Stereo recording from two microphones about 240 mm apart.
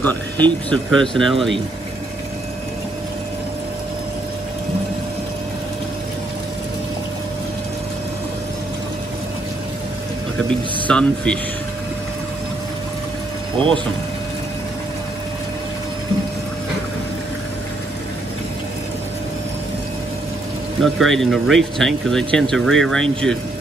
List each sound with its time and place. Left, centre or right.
0.0 s speech: centre
10.5 s speech: centre
20.8 s speech: centre